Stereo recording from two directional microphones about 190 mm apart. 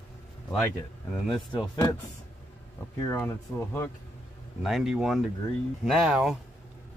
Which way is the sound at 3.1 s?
10° left (ahead or behind).